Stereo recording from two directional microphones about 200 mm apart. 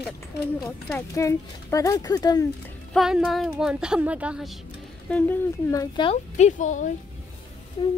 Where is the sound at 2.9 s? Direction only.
Centre (ahead or behind).